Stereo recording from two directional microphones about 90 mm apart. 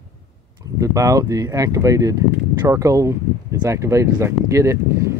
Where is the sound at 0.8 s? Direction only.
35° right (ahead or behind).